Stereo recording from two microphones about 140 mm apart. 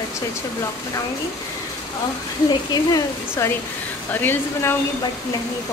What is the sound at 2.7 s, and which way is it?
Speech, 25° left (ahead or behind).